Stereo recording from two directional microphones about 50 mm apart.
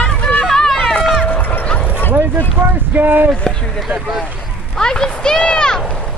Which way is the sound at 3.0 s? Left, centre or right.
Right.